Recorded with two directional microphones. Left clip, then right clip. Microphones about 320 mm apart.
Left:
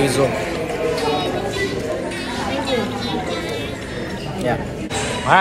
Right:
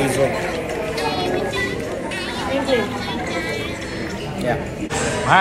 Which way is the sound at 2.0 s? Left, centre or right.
Right.